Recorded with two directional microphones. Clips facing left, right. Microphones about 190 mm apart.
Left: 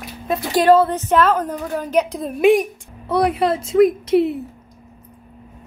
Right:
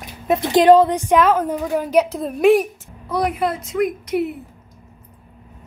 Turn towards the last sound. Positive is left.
turn(degrees=30)  # may be behind; listen again after turning